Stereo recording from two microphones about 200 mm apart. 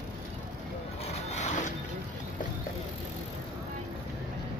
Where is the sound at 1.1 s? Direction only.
35° left (ahead or behind).